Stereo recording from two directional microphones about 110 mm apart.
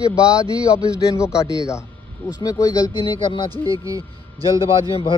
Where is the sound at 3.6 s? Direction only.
35° right (ahead or behind).